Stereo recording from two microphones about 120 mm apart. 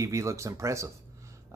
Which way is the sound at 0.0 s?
25° right (ahead or behind).